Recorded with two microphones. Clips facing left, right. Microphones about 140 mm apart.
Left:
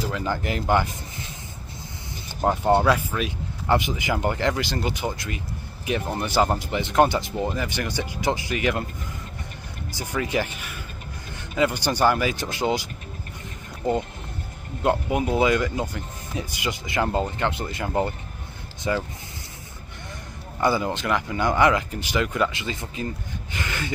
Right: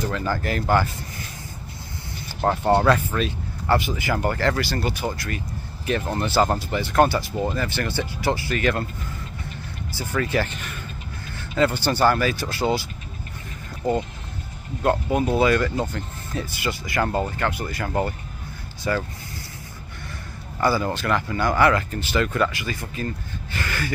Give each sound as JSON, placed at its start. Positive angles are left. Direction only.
{"t": 0.0, "sound": "speech", "side_deg": 15}
{"t": 2.4, "sound": "speech", "side_deg": 10}
{"t": 9.9, "sound": "speech", "side_deg": 15}
{"t": 13.8, "sound": "speech", "side_deg": 20}
{"t": 20.6, "sound": "speech", "side_deg": 20}